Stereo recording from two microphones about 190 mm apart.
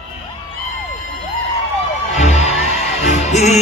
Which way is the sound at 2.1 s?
35° left (ahead or behind).